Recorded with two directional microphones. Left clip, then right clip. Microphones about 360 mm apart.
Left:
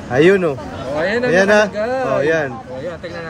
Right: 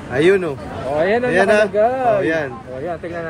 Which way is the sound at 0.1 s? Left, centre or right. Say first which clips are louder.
Left 3 dB; left.